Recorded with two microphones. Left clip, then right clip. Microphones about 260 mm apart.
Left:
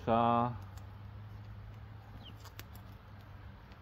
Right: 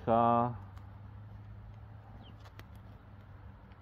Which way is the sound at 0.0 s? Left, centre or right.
Right.